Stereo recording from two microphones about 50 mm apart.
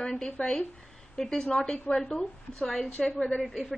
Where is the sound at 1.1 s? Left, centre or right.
Centre.